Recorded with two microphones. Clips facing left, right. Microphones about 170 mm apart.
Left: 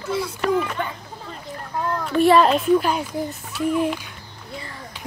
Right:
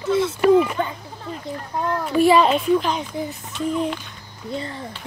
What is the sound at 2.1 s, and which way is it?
Speech, centre (ahead or behind).